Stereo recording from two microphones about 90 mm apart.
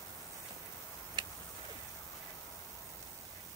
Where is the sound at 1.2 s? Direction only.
50° right (ahead or behind).